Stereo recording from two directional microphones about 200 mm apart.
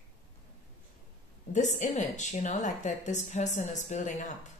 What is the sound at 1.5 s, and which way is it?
A woman's voice, 35° left (ahead or behind).